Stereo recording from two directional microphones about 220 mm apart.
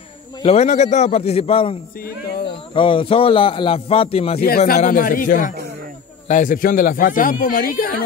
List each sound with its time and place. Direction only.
0.4 s a man's voice: 30° left (ahead or behind)
2.0 s speech: 45° left (ahead or behind)
2.7 s a man's voice: 25° left (ahead or behind)
4.4 s speech: 45° left (ahead or behind)